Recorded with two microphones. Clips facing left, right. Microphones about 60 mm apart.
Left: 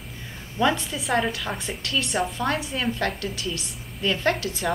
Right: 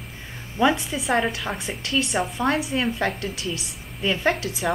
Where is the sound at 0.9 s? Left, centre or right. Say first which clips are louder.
Right 2 dB; centre.